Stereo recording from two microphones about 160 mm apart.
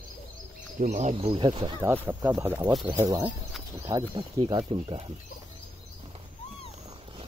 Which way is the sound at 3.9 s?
30° right (ahead or behind).